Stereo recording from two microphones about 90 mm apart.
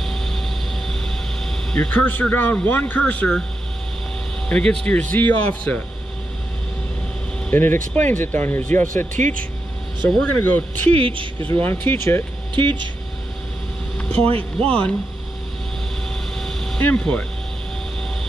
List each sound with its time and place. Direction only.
0.0 s vehicle: 5° left (ahead or behind)
4.5 s speech: 10° left (ahead or behind)
7.5 s speech: 20° left (ahead or behind)
10.0 s speech: 20° left (ahead or behind)
11.0 s speech: 75° right (ahead or behind)
11.4 s speech: 25° left (ahead or behind)
13.9 s vehicle: 15° left (ahead or behind)
14.7 s speech: 15° left (ahead or behind)
16.3 s vehicle: 5° left (ahead or behind)
16.8 s speech: 10° left (ahead or behind)